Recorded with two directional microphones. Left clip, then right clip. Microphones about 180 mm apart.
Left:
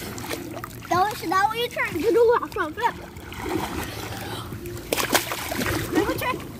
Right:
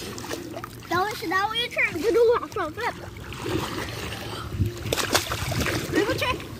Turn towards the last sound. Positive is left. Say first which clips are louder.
# left 1 dB
turn(degrees=35)  # may be behind; listen again after turning